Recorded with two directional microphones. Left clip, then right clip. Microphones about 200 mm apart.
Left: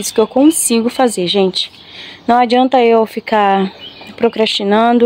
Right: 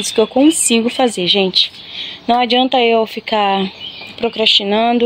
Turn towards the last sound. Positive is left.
turn(degrees=20)  # may be behind; listen again after turning